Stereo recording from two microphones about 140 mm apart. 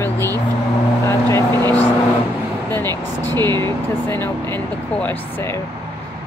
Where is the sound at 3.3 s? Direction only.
30° right (ahead or behind).